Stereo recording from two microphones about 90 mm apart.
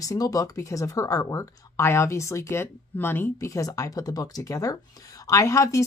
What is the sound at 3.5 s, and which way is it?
Speech, 40° left (ahead or behind).